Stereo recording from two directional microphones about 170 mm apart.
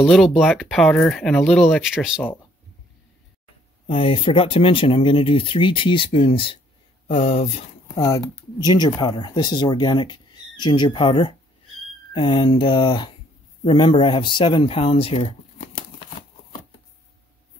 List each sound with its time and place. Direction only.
0.0 s speech: centre (ahead or behind)
3.8 s speech: 30° left (ahead or behind)
8.0 s speech: 20° left (ahead or behind)